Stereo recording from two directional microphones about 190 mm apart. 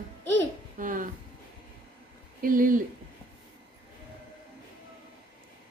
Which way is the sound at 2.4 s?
45° right (ahead or behind).